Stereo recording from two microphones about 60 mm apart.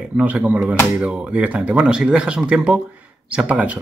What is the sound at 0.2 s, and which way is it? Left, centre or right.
Speech, right.